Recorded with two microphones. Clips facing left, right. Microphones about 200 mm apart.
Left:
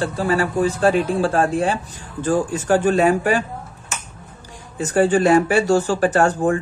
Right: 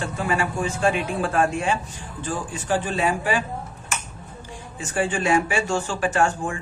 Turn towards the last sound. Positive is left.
turn(degrees=40)  # may be behind; listen again after turning